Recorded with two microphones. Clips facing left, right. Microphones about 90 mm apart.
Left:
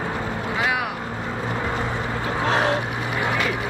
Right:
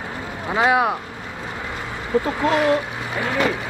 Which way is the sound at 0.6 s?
30° right (ahead or behind).